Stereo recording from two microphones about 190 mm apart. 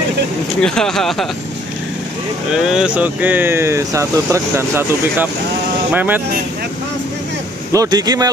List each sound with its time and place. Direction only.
0.6 s speech: 5° left (ahead or behind)
2.5 s speech: 5° right (ahead or behind)
7.7 s speech: 20° right (ahead or behind)